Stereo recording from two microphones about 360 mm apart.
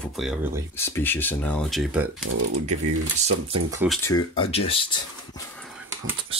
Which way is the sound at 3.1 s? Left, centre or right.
Centre.